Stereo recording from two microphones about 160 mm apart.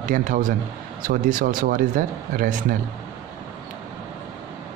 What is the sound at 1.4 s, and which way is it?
Speech, 60° right (ahead or behind).